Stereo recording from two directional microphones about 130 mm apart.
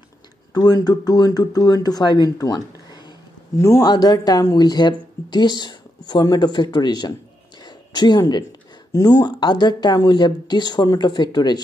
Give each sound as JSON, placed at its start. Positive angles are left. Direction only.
{"t": 0.6, "sound": "speech", "side_deg": 30}